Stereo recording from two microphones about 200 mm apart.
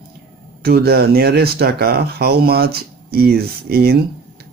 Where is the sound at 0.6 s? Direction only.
50° right (ahead or behind).